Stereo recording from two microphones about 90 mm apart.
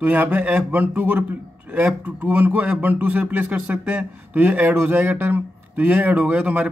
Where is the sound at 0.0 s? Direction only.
20° right (ahead or behind).